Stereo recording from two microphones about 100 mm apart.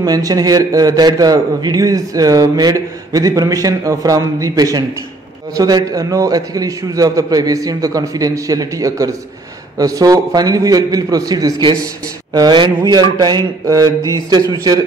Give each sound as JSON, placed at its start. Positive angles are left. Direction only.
{"t": 0.0, "sound": "a man's voice", "side_deg": -40}